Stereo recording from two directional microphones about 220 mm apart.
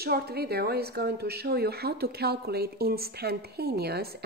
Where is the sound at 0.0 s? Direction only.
45° right (ahead or behind).